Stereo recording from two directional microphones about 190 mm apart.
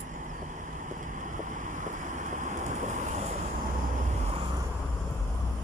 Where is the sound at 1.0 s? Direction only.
40° right (ahead or behind).